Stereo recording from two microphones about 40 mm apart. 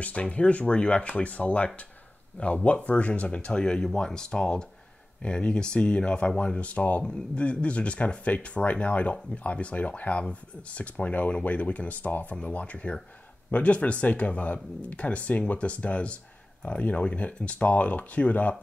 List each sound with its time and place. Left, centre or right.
0.0 s speech: left